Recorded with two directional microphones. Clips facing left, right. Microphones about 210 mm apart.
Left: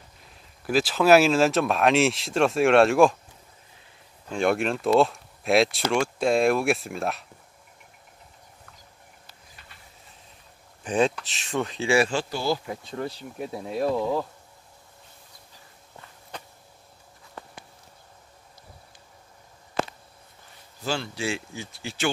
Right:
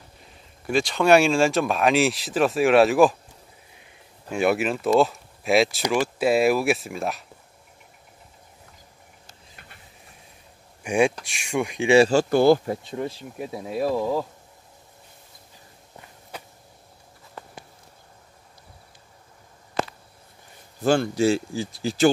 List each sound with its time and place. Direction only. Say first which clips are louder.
0.2 s speech: right 2 dB; centre (ahead or behind)
4.3 s speech: right 2 dB; 5° right (ahead or behind)
10.8 s speech: right 2 dB; 10° right (ahead or behind)
12.1 s speech: right 10 dB; 50° right (ahead or behind)
13.0 s speech: right 2 dB; centre (ahead or behind)
16.0 s walk: right 1 dB; 10° right (ahead or behind)
20.8 s speech: right 10 dB; 50° right (ahead or behind)